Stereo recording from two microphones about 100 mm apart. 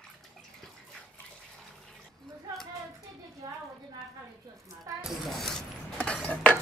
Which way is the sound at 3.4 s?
35° right (ahead or behind).